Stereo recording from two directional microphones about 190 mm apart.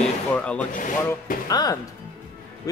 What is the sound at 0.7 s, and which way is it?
Speech, 45° left (ahead or behind).